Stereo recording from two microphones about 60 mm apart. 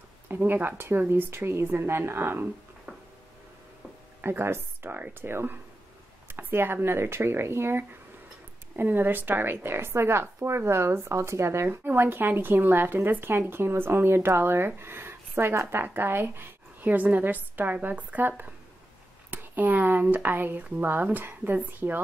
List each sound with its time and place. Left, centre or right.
0.3 s speech: right
4.2 s speech: right